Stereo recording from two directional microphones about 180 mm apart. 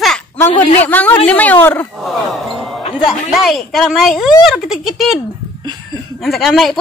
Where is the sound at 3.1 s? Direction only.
Centre (ahead or behind).